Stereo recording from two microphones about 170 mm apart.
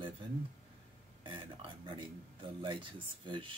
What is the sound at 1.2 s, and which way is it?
A man's voice, 30° right (ahead or behind).